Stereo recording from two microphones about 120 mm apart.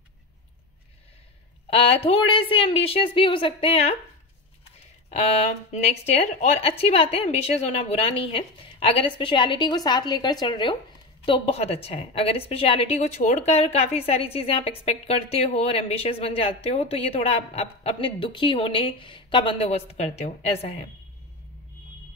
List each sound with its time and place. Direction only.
1.7 s a woman's voice: 55° left (ahead or behind)
5.1 s a woman's voice: 65° left (ahead or behind); by 10.8 s 40° left (ahead or behind)
11.2 s a woman's voice: 55° left (ahead or behind)